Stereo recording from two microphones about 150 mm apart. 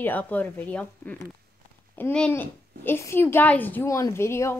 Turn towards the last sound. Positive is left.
turn(degrees=20)  # may be behind; listen again after turning